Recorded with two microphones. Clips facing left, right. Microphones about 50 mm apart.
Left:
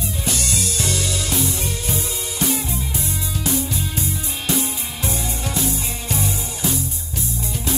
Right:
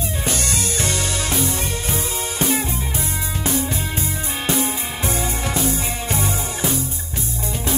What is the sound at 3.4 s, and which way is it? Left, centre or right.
Music, right.